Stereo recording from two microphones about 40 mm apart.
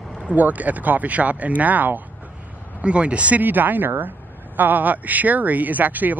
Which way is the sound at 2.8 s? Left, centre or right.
Right.